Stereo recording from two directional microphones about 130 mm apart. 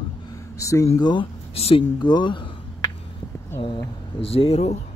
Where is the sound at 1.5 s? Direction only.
50° left (ahead or behind).